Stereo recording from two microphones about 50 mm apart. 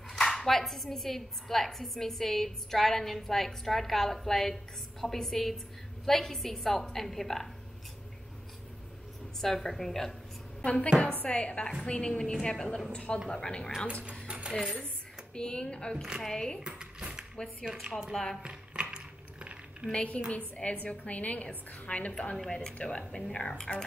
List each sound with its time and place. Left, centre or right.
0.2 s a woman's voice: centre
9.4 s a woman's voice: centre
10.6 s a woman's voice: left
12.6 s a woman's voice: centre
12.9 s a woman's voice: left
14.2 s cutlery: right
14.6 s dishes: right
15.3 s a woman's voice: centre
16.6 s dishes: centre
18.1 s a woman's voice: centre
18.4 s keys jangling: right
20.3 s a woman's voice: left